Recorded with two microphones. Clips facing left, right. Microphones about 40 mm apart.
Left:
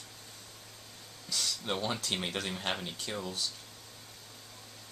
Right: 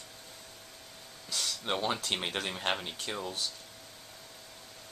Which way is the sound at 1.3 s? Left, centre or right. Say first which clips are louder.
Right 1 dB; centre.